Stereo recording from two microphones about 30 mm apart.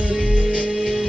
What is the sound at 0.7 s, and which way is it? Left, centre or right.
Music, centre.